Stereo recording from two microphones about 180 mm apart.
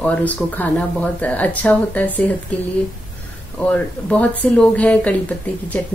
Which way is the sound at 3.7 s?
10° left (ahead or behind).